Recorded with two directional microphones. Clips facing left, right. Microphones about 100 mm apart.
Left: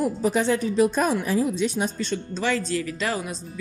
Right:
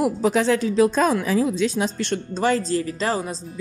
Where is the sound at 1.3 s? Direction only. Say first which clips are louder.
Right 2 dB; 80° right.